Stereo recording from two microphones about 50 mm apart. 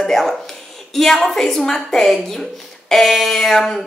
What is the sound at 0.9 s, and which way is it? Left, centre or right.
A woman's voice, centre.